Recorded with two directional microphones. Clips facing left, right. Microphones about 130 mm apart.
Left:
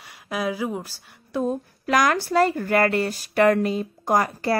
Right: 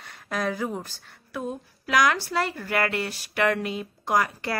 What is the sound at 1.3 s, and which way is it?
Speech, 45° left (ahead or behind).